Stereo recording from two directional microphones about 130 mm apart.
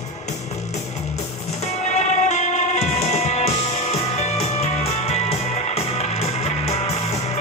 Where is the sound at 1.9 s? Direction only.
60° left (ahead or behind).